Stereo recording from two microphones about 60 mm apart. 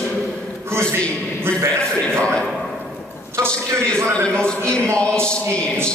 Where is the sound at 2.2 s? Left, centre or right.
Centre.